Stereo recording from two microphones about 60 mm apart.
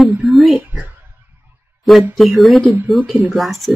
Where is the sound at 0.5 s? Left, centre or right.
Right.